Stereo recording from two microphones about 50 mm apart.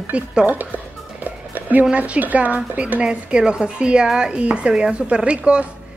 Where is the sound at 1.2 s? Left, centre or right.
Right.